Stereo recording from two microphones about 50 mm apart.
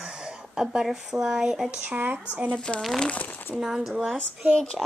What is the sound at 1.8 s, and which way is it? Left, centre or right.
Speech, right.